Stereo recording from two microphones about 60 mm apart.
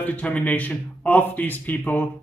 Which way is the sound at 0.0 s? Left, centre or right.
Left.